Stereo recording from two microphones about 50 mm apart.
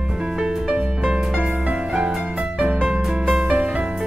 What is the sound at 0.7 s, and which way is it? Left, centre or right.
Music, right.